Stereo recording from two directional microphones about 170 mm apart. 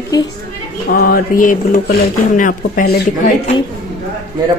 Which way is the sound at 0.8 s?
60° left (ahead or behind).